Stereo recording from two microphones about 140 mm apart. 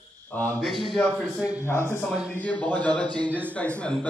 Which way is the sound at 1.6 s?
15° left (ahead or behind).